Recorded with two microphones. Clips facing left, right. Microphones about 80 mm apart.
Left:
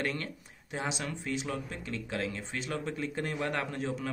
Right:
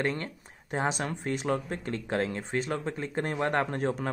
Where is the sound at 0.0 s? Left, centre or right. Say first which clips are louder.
Right 4 dB; right.